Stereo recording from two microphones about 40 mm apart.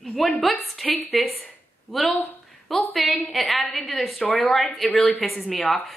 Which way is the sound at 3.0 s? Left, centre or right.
Left.